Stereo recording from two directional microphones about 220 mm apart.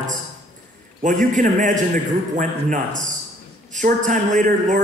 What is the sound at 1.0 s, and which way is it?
A man's voice, 35° right (ahead or behind).